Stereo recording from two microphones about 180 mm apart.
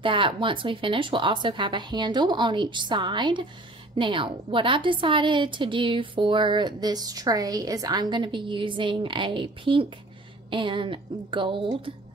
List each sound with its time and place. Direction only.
0.0 s a woman's voice: 30° right (ahead or behind)